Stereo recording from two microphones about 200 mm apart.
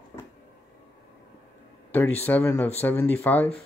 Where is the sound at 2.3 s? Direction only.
10° left (ahead or behind).